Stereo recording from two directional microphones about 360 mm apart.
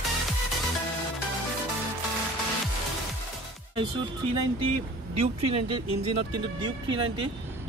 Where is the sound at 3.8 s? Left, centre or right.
Centre.